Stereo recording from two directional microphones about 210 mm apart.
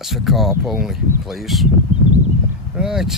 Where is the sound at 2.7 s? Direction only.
5° right (ahead or behind).